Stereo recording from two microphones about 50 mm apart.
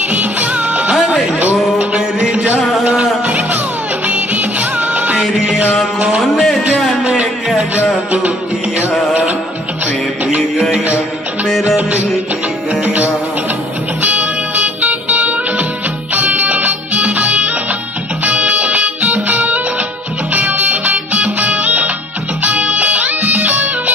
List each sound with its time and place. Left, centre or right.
0.1 s music of bollywood: right
1.0 s music: right
2.8 s music: centre
4.1 s music of bollywood: right
5.3 s music: centre
6.0 s a sound: centre
6.8 s music: centre
12.8 s music: right
18.7 s music: right